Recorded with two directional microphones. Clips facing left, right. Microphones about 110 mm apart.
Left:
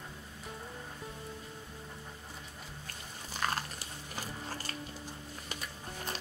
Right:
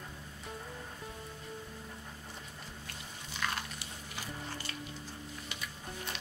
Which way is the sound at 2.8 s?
40° left (ahead or behind).